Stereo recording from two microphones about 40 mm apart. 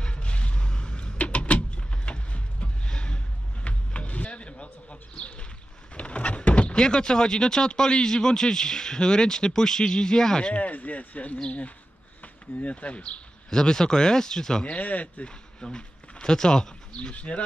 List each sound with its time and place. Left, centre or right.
0.0 s vehicle: left
3.6 s music: left
5.1 s bird: left
5.9 s a sound: left
6.7 s speech: centre
10.4 s speech: left
13.5 s speech: centre
14.6 s speech: left
15.2 s speech: left
17.1 s speech: left